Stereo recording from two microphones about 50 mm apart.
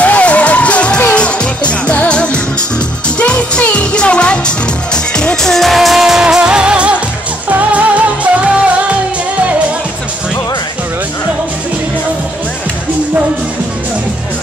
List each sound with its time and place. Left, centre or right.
0.0 s music: left; by 8.7 s right